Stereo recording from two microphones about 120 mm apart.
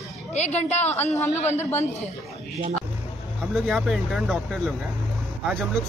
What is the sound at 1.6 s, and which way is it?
Speech, 20° left (ahead or behind).